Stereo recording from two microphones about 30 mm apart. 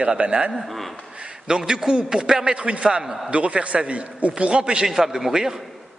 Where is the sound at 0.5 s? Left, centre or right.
Centre.